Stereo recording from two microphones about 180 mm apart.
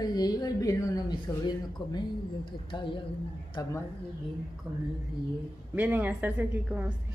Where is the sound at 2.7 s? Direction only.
25° left (ahead or behind).